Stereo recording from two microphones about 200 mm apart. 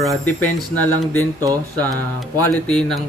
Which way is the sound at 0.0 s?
5° left (ahead or behind).